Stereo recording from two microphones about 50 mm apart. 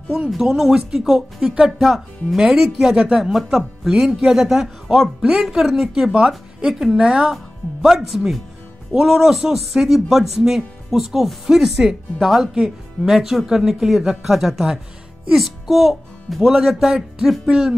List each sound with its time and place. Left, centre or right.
0.4 s a man's voice: centre
2.3 s a man's voice: centre
6.7 s speech: centre
7.0 s a man's voice: centre
7.8 s a man's voice: centre